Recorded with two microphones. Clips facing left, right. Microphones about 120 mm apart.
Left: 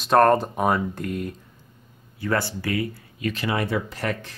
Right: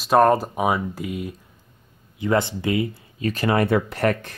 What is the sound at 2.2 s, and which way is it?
Speech, 20° right (ahead or behind).